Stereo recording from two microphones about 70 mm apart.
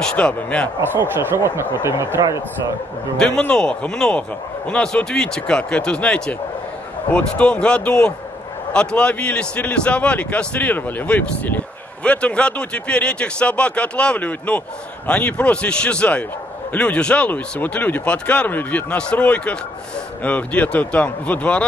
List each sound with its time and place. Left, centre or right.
0.0 s a man's voice: centre
0.9 s speech: right
3.2 s a man's voice: centre